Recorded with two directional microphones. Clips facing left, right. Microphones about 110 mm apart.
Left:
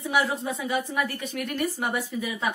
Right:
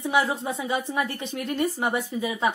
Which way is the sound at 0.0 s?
20° right (ahead or behind).